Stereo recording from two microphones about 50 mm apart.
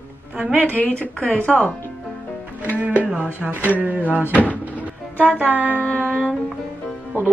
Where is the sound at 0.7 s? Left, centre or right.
Left.